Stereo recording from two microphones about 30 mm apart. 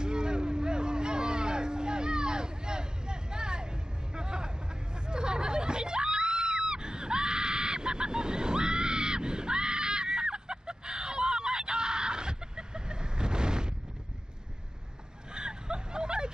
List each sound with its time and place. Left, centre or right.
0.0 s a sound: right
4.1 s hubbub: right
5.0 s screaming: right
15.3 s vehicle: right